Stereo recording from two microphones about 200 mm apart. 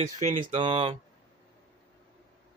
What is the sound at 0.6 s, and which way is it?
Speech, 25° right (ahead or behind).